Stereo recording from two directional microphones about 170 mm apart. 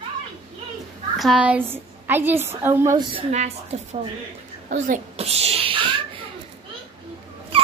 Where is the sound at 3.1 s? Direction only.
35° right (ahead or behind).